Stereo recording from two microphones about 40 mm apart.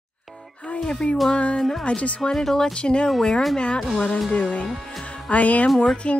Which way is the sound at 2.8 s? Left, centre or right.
Left.